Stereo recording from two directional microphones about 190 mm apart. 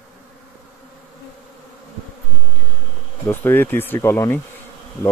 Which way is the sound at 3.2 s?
10° left (ahead or behind).